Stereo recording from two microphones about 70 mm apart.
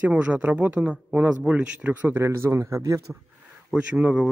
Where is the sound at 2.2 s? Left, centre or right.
Right.